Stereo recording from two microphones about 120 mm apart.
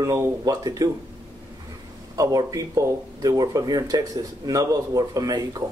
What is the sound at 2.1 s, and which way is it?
A man's voice, 30° right (ahead or behind).